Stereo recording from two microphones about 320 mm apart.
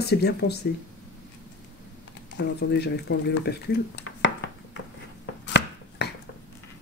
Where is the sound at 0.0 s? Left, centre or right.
Left.